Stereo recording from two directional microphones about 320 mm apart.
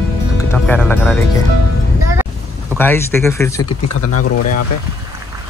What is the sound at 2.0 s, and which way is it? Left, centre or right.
Vehicle, centre.